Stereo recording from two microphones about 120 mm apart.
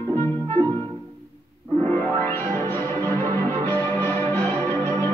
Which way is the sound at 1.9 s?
20° left (ahead or behind).